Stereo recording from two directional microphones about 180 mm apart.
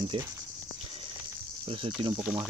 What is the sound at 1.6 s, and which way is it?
Speech, 30° right (ahead or behind).